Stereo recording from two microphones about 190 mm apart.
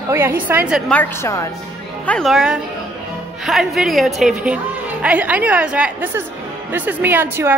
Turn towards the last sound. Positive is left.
turn(degrees=-10)  # may be behind; listen again after turning